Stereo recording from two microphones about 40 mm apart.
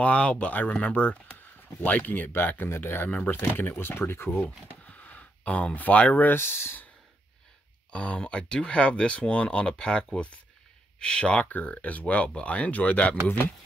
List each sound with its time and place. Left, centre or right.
0.0 s speech: left
0.5 s speech: left
0.7 s speech: left
1.8 s speech: left
2.7 s speech: left
4.4 s a sound: left
5.8 s speech: left
6.3 s speech: left
7.9 s speech: left
11.4 s speech: left